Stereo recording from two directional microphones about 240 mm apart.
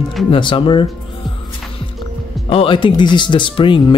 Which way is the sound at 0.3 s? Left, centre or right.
Left.